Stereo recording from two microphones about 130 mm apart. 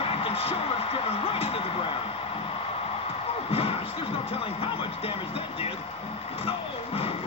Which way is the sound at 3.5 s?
50° left (ahead or behind).